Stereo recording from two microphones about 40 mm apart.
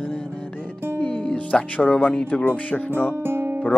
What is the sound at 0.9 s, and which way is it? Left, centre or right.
Music, left.